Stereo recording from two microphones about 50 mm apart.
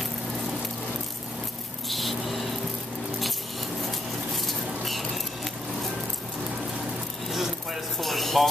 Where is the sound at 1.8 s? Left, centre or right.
Centre.